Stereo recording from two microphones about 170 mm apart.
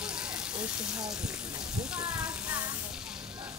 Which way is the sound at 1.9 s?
5° right (ahead or behind).